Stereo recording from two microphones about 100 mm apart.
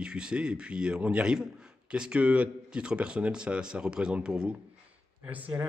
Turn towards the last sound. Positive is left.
turn(degrees=-15)  # may be behind; listen again after turning